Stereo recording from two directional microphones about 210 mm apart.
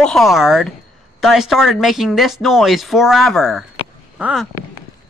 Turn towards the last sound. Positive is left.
turn(degrees=0)  # may be behind; listen again after turning